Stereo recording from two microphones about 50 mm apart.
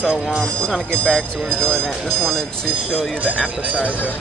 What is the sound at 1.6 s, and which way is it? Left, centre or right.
Speech, centre.